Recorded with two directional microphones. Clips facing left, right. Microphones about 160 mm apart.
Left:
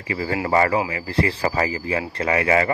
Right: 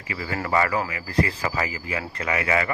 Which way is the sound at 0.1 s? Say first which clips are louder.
Left 4 dB; 35° left (ahead or behind).